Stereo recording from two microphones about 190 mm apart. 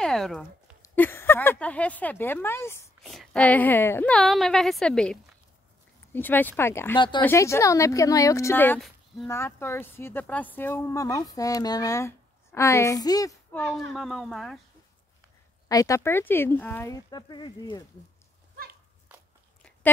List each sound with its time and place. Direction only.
0.0 s a sound: centre (ahead or behind)
0.8 s speech: 10° left (ahead or behind)
3.0 s a woman's voice: centre (ahead or behind)
8.8 s a sound: centre (ahead or behind)
9.3 s a woman's voice: 15° left (ahead or behind)
15.7 s speech: 15° left (ahead or behind)